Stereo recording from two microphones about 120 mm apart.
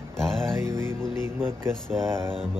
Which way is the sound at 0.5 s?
25° right (ahead or behind).